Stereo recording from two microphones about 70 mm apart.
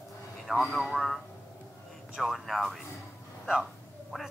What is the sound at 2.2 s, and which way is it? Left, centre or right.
Speech, centre.